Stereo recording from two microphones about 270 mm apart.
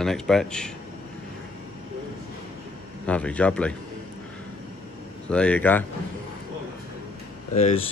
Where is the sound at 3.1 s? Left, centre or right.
Centre.